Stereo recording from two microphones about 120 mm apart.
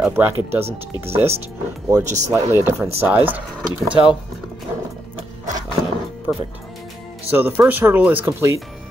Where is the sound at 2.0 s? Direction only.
80° right.